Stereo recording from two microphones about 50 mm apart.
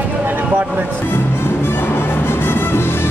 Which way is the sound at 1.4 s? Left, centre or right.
Left.